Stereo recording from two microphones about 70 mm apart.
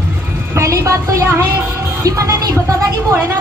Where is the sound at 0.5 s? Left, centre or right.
Right.